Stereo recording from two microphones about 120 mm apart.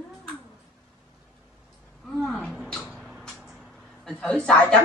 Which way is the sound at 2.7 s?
5° left (ahead or behind).